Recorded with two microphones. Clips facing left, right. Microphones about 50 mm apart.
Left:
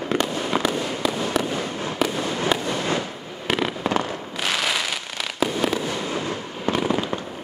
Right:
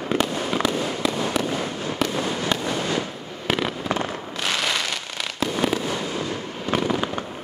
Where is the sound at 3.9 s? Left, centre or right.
Left.